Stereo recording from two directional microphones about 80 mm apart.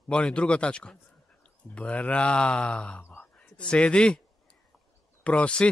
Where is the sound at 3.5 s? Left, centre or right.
Centre.